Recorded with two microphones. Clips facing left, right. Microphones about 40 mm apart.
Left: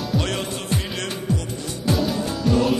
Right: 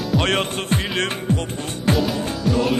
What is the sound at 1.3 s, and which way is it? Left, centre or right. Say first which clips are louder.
Speech: right 1 dB; right.